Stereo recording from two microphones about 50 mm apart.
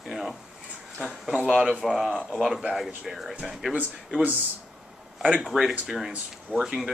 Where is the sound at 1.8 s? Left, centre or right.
Centre.